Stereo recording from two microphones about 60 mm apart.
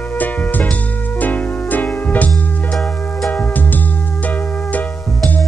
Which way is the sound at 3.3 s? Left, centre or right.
Left.